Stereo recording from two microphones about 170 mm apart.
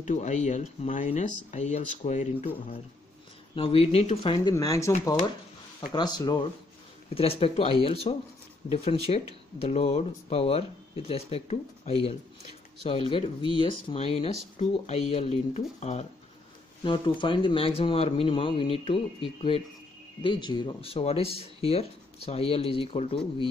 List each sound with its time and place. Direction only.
0.0 s speech: 45° left (ahead or behind); by 6.4 s 25° left (ahead or behind)
7.2 s speech: 35° left (ahead or behind)
16.8 s speech: 30° left (ahead or behind)
20.2 s speech: 30° left (ahead or behind)